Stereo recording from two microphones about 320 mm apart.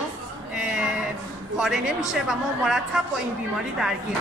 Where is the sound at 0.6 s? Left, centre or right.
Centre.